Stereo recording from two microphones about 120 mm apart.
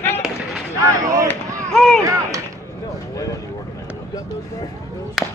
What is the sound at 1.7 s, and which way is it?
Speech, 5° left (ahead or behind).